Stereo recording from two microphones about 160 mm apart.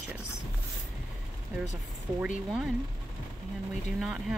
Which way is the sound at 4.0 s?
5° right (ahead or behind).